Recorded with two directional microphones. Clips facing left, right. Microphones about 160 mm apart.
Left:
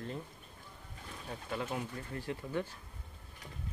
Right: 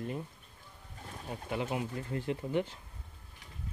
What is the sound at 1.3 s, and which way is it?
Speech, 20° right (ahead or behind).